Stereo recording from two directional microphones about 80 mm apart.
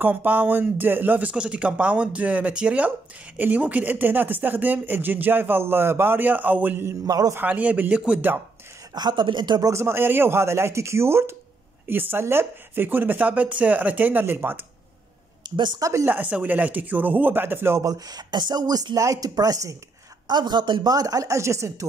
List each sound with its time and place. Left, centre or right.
0.0 s speech: right
7.1 s speech: right
7.3 s speech: centre
8.9 s speech: right
9.6 s speech: right
15.5 s speech: right
15.8 s speech: right
16.1 s speech: centre
17.8 s speech: right
20.2 s speech: right